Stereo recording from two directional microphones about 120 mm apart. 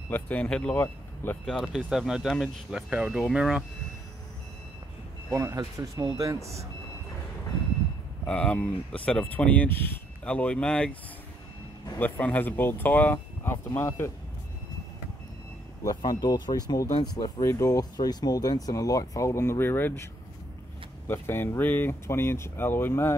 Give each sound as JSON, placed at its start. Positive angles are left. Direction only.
{"t": 0.1, "sound": "speech", "side_deg": 10}
{"t": 1.4, "sound": "speech", "side_deg": 0}
{"t": 5.3, "sound": "speech", "side_deg": -25}
{"t": 8.3, "sound": "speech", "side_deg": 10}
{"t": 12.0, "sound": "speech", "side_deg": 15}
{"t": 15.8, "sound": "speech", "side_deg": 30}
{"t": 21.1, "sound": "speech", "side_deg": 20}